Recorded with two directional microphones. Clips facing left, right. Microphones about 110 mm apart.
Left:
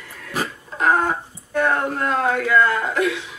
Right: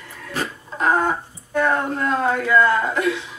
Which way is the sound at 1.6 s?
30° right (ahead or behind).